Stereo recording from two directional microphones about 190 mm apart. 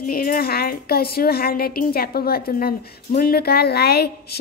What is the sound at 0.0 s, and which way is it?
Speech, 50° left (ahead or behind).